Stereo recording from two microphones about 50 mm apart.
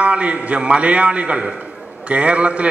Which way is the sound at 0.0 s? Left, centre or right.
Right.